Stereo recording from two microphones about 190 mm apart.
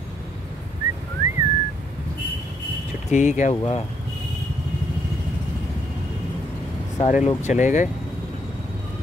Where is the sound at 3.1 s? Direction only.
40° left (ahead or behind).